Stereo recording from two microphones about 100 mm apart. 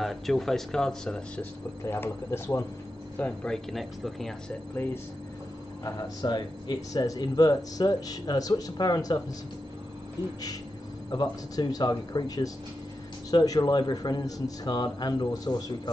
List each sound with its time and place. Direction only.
0.0 s speech: centre (ahead or behind)
1.9 s speech: 25° left (ahead or behind)
3.2 s speech: 15° left (ahead or behind)
3.5 s speech: centre (ahead or behind)
4.8 s speech: 20° left (ahead or behind)
5.9 s speech: 45° left (ahead or behind)
11.1 s a man's voice: 40° left (ahead or behind)